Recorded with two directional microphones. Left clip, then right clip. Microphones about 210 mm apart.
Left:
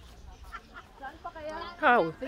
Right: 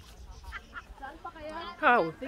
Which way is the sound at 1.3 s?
25° right (ahead or behind).